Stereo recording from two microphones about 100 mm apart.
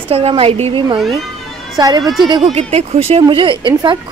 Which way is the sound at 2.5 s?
90° right.